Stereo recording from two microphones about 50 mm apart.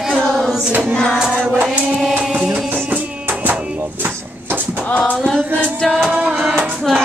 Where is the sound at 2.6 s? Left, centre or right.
Right.